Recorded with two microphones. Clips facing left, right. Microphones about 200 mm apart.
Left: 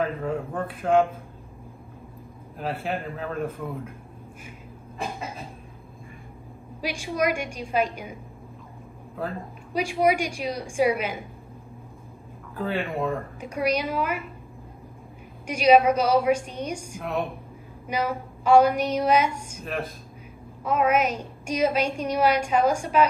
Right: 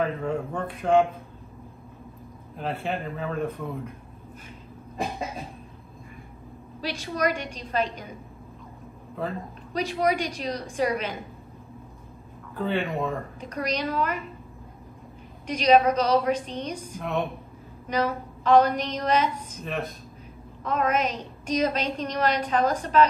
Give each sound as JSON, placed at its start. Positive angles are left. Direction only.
{"t": 0.0, "sound": "a man's voice", "side_deg": 0}
{"t": 2.5, "sound": "a man's voice", "side_deg": 5}
{"t": 6.8, "sound": "a woman's voice", "side_deg": 10}
{"t": 12.5, "sound": "a man's voice", "side_deg": 0}
{"t": 13.4, "sound": "a woman's voice", "side_deg": 10}
{"t": 15.4, "sound": "a woman's voice", "side_deg": 10}